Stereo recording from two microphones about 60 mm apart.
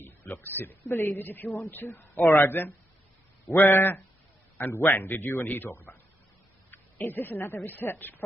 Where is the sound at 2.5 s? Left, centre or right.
Left.